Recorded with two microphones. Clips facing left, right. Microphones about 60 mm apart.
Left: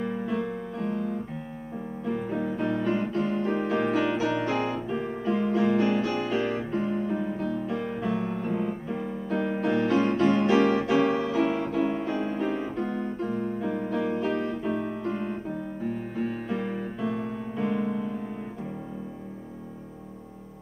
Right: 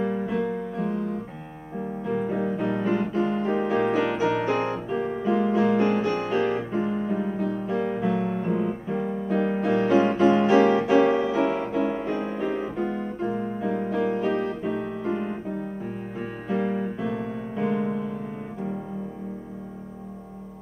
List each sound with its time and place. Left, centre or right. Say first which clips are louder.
0.0 s music: right 4 dB; centre; by 7.6 s right
7.6 s music: right 4 dB; centre
16.2 s music: right 4 dB; centre